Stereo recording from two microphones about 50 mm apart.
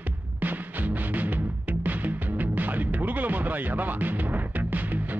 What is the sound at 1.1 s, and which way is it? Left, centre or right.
Music, right.